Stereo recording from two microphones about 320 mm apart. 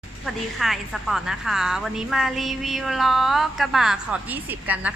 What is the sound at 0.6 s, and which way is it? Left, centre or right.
A woman's voice, centre.